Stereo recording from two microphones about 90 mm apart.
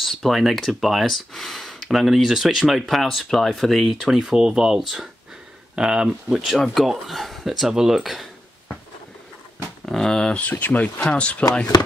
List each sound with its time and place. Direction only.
0.0 s speech: centre (ahead or behind)
9.8 s speech: 5° left (ahead or behind)